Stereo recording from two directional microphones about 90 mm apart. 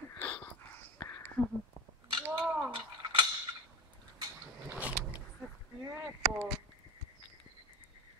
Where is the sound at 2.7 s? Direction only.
65° right (ahead or behind).